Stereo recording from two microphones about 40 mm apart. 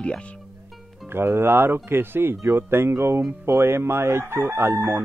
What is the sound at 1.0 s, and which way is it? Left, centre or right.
Speech, right.